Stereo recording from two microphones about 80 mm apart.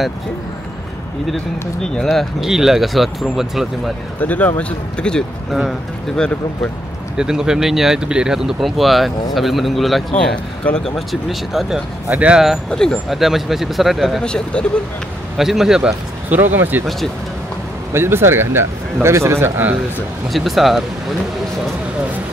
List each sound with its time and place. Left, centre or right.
1.8 s speech: centre
4.2 s speech: left
5.5 s speech: centre
7.2 s speech: centre
10.1 s speech: centre
11.0 s speech: centre
12.1 s speech: centre
12.6 s speech: centre
13.1 s speech: centre
14.2 s speech: centre
15.3 s speech: centre
16.3 s speech: right
17.9 s a man's voice: right
20.3 s speech: centre